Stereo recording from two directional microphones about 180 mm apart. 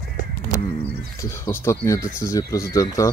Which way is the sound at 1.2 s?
15° left (ahead or behind).